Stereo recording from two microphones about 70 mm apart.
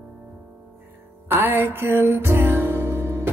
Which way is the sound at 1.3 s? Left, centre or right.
Right.